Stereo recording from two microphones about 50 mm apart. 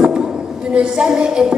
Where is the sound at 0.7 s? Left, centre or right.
Centre.